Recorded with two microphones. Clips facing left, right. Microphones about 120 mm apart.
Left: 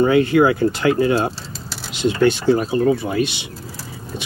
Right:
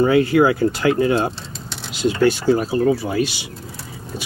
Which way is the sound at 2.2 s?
20° left (ahead or behind).